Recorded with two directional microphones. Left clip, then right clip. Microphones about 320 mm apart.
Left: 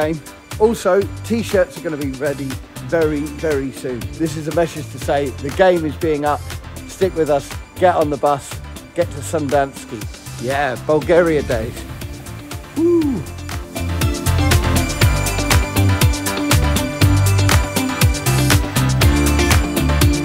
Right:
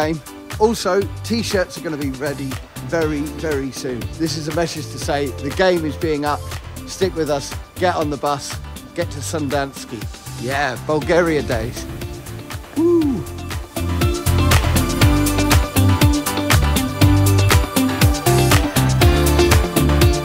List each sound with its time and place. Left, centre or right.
0.0 s speech: centre
12.8 s speech: centre
13.7 s music: centre